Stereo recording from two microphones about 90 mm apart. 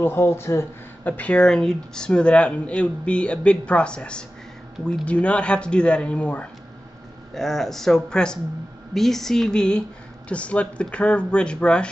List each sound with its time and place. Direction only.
0.0 s speech: 25° left (ahead or behind)
1.0 s speech: 15° left (ahead or behind)
7.3 s speech: 5° left (ahead or behind)